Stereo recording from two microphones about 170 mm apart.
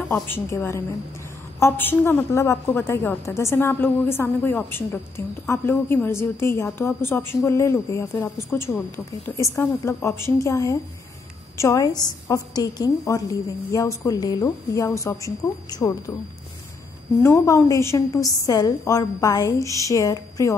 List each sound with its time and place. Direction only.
0.3 s a woman's voice: 15° left (ahead or behind)
17.2 s a woman's voice: 15° left (ahead or behind)